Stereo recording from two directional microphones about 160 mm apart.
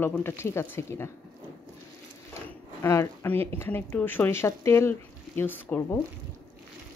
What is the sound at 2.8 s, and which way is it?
Speech, 15° left (ahead or behind).